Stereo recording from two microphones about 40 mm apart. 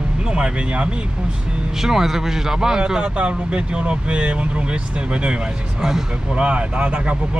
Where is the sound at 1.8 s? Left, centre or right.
Centre.